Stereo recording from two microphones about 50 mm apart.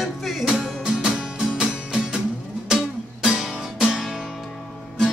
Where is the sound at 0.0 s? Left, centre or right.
Centre.